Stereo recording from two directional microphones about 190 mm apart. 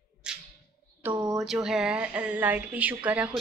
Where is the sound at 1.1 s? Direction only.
20° right (ahead or behind).